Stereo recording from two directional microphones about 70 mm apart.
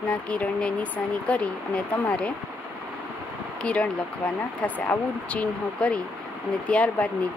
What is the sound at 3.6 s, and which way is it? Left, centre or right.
Speech, centre.